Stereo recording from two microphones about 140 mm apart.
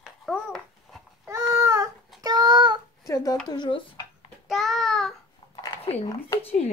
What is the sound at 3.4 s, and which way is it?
Speech, 35° left (ahead or behind).